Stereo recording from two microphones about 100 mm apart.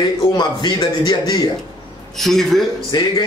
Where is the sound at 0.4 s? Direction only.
45° left (ahead or behind).